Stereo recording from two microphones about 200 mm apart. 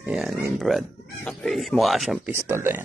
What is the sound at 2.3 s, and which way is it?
Speech, 10° right (ahead or behind).